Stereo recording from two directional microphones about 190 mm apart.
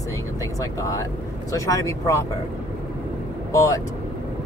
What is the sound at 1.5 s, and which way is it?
Speech, 15° left (ahead or behind).